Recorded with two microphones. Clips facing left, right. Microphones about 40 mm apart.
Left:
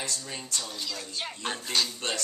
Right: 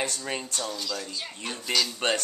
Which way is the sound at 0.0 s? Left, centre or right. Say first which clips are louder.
Right 6 dB; right.